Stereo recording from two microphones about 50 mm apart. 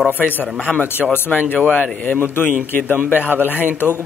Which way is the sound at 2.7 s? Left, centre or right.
Left.